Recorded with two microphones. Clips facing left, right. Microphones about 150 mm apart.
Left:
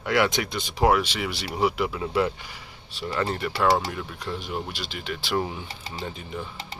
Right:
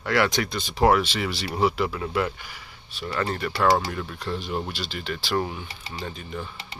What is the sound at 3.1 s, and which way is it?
Speech, 15° left (ahead or behind).